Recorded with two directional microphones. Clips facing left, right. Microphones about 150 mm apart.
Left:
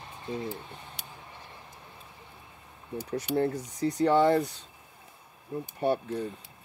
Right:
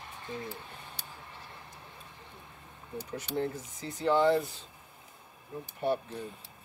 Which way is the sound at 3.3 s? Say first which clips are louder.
Left 6 dB; 70° left (ahead or behind).